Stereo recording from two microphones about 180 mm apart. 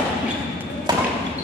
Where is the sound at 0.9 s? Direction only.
25° right (ahead or behind).